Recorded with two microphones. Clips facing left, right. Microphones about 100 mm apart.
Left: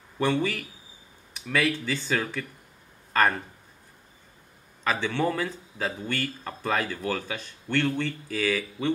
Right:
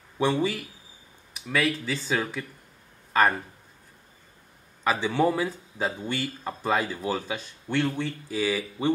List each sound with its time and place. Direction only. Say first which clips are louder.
0.2 s speech: right 1 dB; 5° right (ahead or behind)
3.1 s a sound: right 1 dB; 5° right (ahead or behind)
4.8 s speech: right 3 dB; 10° right (ahead or behind)
8.5 s speech: right 2 dB; 25° right (ahead or behind)